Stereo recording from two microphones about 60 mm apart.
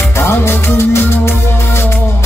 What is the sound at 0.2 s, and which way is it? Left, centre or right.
Music, left.